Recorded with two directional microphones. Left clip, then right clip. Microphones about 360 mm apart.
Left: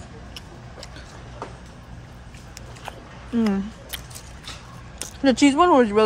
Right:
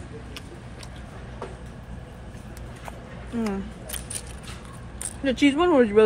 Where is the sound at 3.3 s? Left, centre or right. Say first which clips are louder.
Left 5 dB; centre.